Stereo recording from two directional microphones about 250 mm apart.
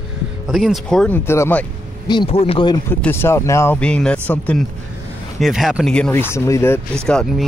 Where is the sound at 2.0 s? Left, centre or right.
Left.